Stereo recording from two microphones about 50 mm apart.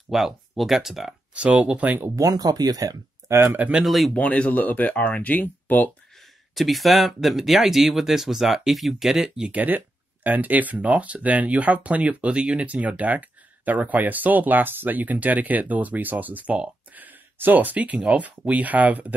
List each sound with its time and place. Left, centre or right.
0.1 s speech: centre
1.3 s speech: right
3.4 s speech: right
3.8 s speech: centre
4.1 s speech: left
6.5 s speech: centre
9.2 s speech: centre
9.6 s speech: right